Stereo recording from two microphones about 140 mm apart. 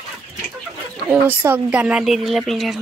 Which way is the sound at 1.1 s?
15° right (ahead or behind).